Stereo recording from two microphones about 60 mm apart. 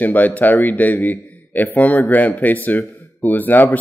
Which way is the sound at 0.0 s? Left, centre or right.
Left.